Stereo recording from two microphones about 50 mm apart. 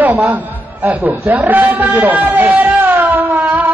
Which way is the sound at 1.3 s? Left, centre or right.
Right.